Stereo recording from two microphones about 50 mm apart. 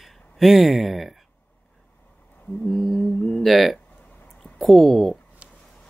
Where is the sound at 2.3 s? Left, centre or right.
Left.